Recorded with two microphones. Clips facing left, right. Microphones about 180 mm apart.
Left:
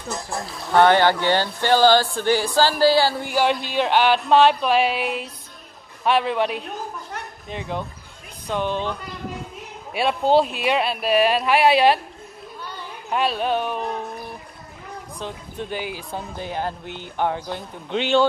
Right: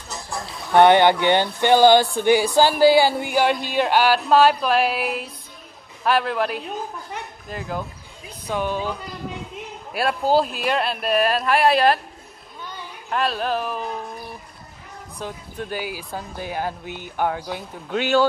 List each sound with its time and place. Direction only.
0.4 s speech: centre (ahead or behind)
0.7 s speech: 20° right (ahead or behind)
3.2 s speech: 5° right (ahead or behind)
9.9 s speech: centre (ahead or behind)
13.1 s speech: centre (ahead or behind)
15.1 s speech: 5° right (ahead or behind)